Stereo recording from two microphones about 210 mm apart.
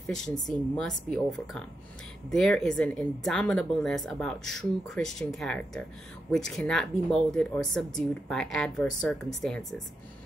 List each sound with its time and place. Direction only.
0.0 s speech: centre (ahead or behind)